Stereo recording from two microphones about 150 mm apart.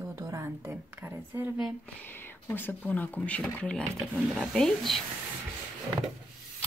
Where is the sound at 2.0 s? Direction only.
15° left (ahead or behind).